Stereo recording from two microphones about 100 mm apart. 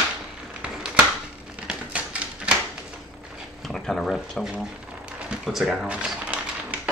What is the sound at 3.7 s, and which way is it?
Speech, 5° left (ahead or behind).